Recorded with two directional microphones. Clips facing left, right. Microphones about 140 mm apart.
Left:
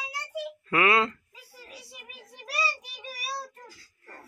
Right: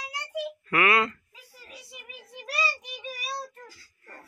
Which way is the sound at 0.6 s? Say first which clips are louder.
Left 1 dB; 25° left (ahead or behind).